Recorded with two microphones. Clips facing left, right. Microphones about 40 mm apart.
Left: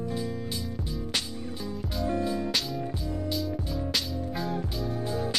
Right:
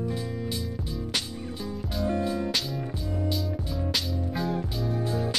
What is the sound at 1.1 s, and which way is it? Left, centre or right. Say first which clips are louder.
Music: even; centre.